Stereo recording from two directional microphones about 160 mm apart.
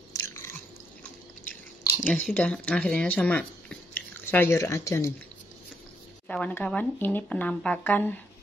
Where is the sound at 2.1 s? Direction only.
10° left (ahead or behind).